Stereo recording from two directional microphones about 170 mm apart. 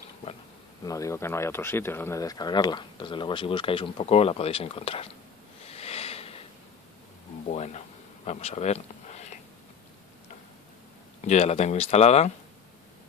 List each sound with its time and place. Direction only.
0.8 s speech: 20° left (ahead or behind); by 5.1 s 35° left (ahead or behind)
5.7 s a sound: 35° left (ahead or behind)
7.4 s speech: 40° left (ahead or behind)
11.1 s speech: 40° left (ahead or behind)